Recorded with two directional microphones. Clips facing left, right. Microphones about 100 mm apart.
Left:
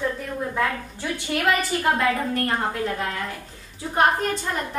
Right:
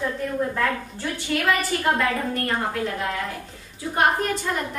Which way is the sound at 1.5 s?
30° left (ahead or behind).